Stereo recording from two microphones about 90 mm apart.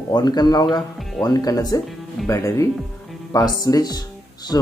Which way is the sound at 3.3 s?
45° left (ahead or behind).